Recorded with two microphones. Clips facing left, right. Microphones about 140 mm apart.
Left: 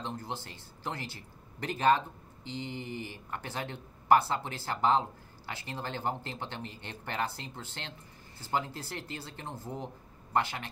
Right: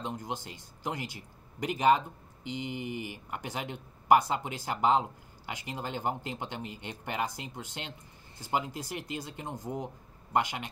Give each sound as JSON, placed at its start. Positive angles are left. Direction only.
{"t": 0.0, "sound": "a man's voice", "side_deg": -15}